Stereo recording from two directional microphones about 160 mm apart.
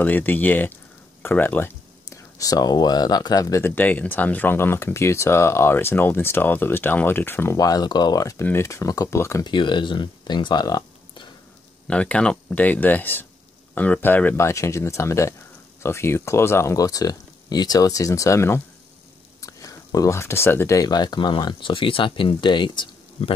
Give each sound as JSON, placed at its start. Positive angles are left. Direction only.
{"t": 0.0, "sound": "speech", "side_deg": 10}
{"t": 9.5, "sound": "speech", "side_deg": 30}
{"t": 11.9, "sound": "speech", "side_deg": 5}